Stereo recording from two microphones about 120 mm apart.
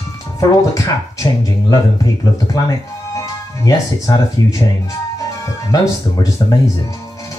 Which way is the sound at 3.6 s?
30° left (ahead or behind).